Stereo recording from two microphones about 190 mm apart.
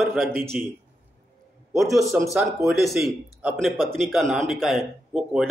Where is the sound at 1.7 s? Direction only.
15° right (ahead or behind).